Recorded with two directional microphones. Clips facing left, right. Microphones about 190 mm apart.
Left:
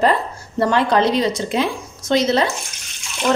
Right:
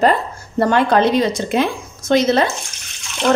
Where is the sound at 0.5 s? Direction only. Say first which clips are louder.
Right 2 dB; 55° right (ahead or behind).